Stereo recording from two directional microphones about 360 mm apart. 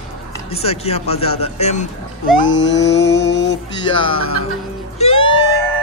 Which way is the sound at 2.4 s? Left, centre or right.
Left.